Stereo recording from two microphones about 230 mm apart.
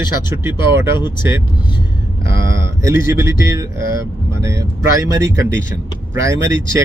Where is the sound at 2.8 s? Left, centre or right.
Centre.